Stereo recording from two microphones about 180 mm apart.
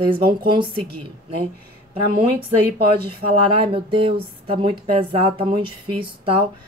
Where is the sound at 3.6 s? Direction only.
30° right (ahead or behind).